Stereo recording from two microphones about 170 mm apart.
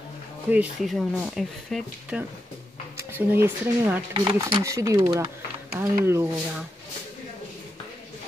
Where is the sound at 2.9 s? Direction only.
10° right (ahead or behind).